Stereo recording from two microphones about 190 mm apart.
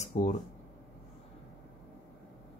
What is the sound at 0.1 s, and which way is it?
Speech, 40° left (ahead or behind).